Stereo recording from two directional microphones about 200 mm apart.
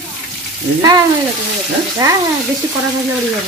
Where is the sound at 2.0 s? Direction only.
20° right (ahead or behind).